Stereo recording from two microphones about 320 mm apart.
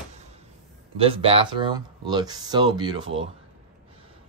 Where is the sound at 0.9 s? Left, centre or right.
Centre.